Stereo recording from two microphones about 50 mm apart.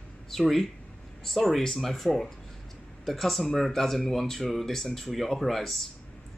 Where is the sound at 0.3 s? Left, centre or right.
Centre.